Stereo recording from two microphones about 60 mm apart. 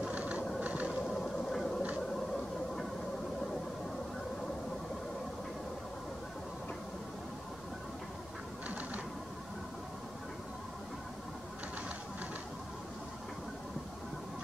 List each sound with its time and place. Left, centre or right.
0.1 s vehicle: right
0.6 s train: right
1.2 s a sound: centre